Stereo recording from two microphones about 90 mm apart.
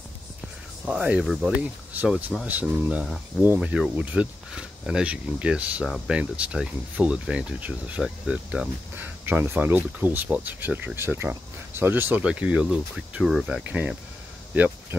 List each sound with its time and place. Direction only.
0.8 s speech: 15° right (ahead or behind)
1.6 s speech: 15° right (ahead or behind)
13.2 s speech: centre (ahead or behind)
13.5 s speech: 15° right (ahead or behind)